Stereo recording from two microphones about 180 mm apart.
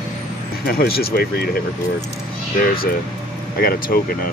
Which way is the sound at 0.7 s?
60° left (ahead or behind).